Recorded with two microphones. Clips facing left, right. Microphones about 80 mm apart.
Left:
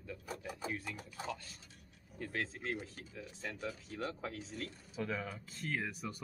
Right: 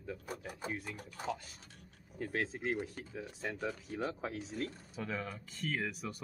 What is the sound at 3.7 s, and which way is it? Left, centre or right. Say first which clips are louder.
Speech: right 3 dB; right.